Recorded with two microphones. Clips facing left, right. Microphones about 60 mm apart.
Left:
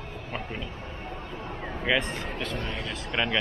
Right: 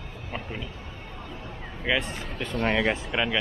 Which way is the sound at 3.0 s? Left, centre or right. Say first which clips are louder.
Right 1 dB; centre.